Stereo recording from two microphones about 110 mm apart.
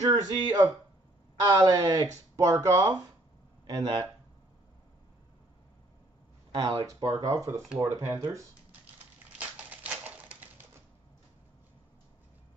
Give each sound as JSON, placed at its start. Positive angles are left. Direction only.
{"t": 0.0, "sound": "speech", "side_deg": -35}
{"t": 6.5, "sound": "speech", "side_deg": -35}
{"t": 9.8, "sound": "typewriter", "side_deg": -15}